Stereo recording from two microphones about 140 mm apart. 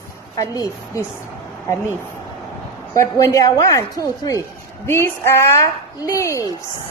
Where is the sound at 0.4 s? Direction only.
25° left (ahead or behind).